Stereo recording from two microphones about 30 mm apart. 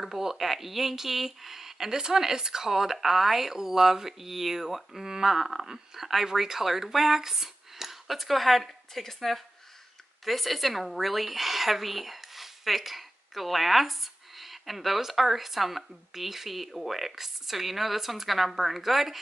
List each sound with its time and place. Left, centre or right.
0.0 s speech: centre
2.0 s speech: right
5.3 s speech: centre